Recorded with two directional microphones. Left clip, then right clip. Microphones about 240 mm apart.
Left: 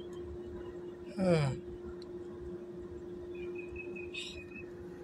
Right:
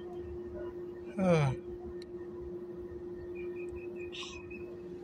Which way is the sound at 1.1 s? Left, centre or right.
Centre.